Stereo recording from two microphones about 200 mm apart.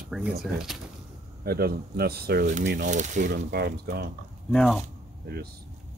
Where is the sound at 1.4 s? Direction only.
50° right (ahead or behind).